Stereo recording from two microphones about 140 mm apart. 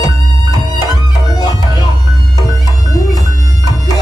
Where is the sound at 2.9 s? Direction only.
25° left (ahead or behind).